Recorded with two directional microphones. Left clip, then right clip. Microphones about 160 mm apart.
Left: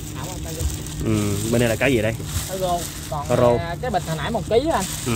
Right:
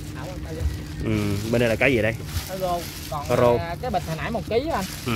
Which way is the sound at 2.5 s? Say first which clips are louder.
Left 3 dB; 10° left (ahead or behind).